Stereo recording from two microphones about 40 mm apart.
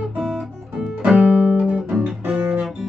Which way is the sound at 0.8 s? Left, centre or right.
Right.